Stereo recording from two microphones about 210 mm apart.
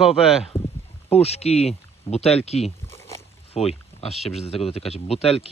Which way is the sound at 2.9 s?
10° left (ahead or behind).